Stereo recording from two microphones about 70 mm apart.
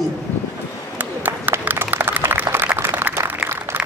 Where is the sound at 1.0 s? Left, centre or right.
Right.